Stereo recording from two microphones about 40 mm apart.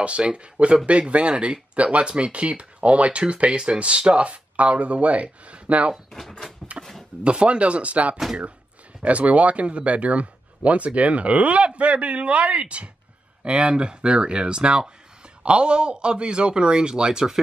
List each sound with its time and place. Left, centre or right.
0.0 s a man's voice: right
6.8 s a sound: centre
7.2 s a man's voice: right